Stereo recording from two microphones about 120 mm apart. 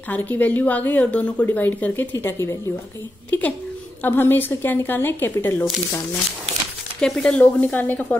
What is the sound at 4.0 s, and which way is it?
A woman's voice, 15° left (ahead or behind).